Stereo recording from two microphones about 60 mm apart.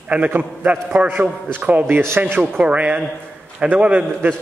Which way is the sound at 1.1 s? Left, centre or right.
Right.